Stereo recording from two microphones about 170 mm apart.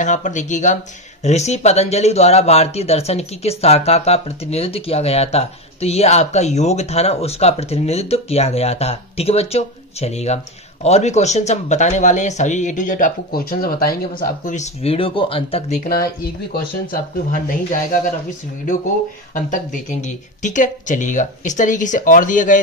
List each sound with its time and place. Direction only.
0.0 s speech: 45° left (ahead or behind)
14.5 s speech: 40° left (ahead or behind)
15.8 s speech: 60° left (ahead or behind)
19.3 s speech: 50° left (ahead or behind)